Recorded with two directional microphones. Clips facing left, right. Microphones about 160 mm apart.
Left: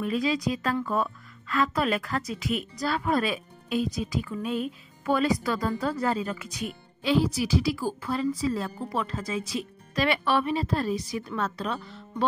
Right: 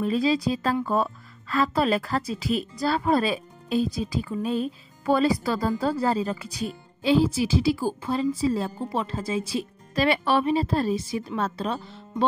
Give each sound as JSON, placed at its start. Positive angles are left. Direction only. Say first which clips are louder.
{"t": 0.0, "sound": "speech", "louder": "right 4 dB", "side_deg": -30}